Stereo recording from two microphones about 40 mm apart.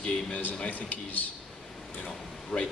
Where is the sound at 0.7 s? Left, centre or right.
Left.